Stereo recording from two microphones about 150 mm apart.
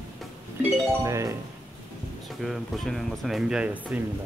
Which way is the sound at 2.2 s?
Centre (ahead or behind).